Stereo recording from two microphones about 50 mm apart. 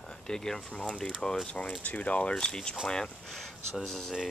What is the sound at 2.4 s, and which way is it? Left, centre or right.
Speech, centre.